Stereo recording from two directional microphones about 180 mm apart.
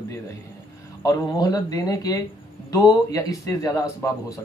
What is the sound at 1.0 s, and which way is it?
A man's voice, 20° left (ahead or behind).